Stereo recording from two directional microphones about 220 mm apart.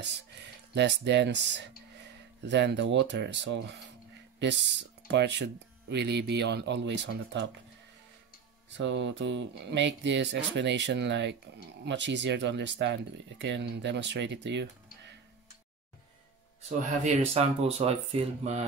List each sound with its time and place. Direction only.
0.3 s speech: 50° right (ahead or behind)
8.6 s speech: 55° right (ahead or behind)
17.0 s speech: 30° right (ahead or behind)